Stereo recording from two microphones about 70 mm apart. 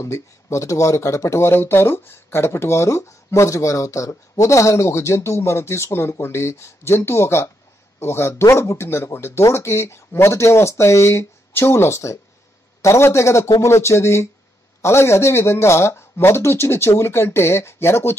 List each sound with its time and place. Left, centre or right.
0.0 s speech: left